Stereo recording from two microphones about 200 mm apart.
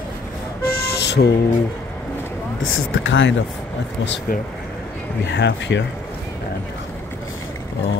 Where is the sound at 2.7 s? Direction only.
75° left (ahead or behind).